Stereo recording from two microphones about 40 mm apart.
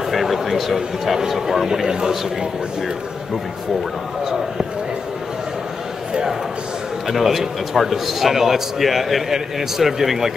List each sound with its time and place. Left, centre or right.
0.1 s a sound: centre
0.7 s a man's voice: centre
1.9 s a man's voice: centre
7.1 s a man's voice: centre